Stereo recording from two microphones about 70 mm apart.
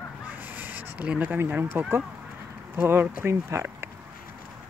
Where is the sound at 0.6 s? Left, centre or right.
Right.